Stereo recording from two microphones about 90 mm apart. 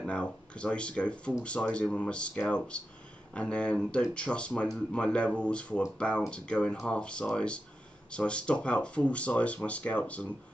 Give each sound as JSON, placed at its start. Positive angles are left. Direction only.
{"t": 0.0, "sound": "speech", "side_deg": 10}